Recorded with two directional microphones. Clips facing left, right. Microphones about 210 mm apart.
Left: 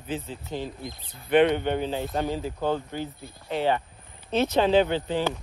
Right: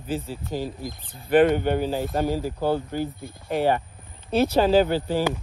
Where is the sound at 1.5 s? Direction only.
5° right (ahead or behind).